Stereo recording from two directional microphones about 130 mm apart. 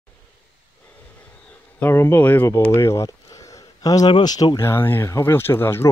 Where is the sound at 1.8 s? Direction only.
15° left (ahead or behind); by 4.6 s 35° left (ahead or behind).